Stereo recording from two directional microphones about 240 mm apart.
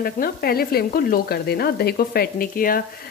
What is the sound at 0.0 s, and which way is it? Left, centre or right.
Speech, left.